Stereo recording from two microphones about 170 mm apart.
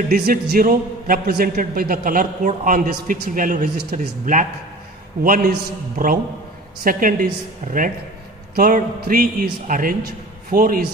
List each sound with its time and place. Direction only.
0.1 s a man's voice: 60° right (ahead or behind)